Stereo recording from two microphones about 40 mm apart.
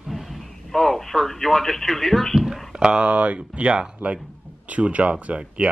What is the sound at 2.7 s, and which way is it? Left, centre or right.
Speech, right.